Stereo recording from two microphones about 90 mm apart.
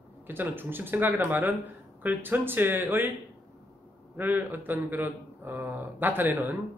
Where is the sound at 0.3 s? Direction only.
25° right (ahead or behind).